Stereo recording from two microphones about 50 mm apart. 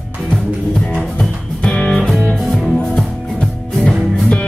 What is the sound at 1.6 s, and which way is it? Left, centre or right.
Music, left.